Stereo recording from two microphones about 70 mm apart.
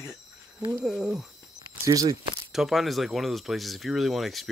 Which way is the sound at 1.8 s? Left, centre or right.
Right.